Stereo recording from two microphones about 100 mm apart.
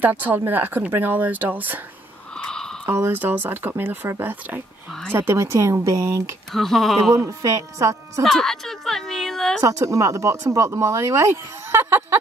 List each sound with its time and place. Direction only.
0.0 s speech: 20° right (ahead or behind)
2.3 s a sound: 5° left (ahead or behind)
2.9 s speech: 25° right (ahead or behind)
6.5 s speech: centre (ahead or behind)
7.2 s speech: 30° right (ahead or behind)
8.2 s a woman's voice: 5° left (ahead or behind)
9.6 s speech: 35° right (ahead or behind)